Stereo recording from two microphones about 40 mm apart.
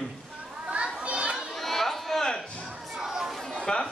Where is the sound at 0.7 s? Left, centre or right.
Right.